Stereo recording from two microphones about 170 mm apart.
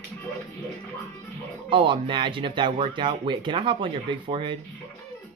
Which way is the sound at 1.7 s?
30° right (ahead or behind).